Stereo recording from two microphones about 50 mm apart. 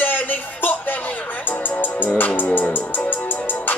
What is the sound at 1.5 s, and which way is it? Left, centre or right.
Music, left.